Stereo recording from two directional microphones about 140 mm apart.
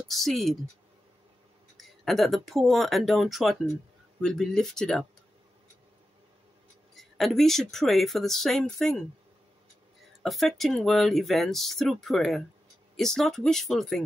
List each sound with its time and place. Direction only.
0.1 s speech: centre (ahead or behind)
1.8 s speech: centre (ahead or behind)
7.0 s speech: centre (ahead or behind)
10.2 s speech: centre (ahead or behind)